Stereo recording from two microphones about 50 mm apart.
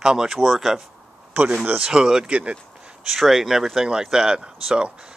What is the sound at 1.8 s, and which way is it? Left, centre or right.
Speech, centre.